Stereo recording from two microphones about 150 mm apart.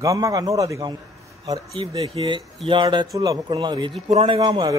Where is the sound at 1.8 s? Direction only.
40° right (ahead or behind).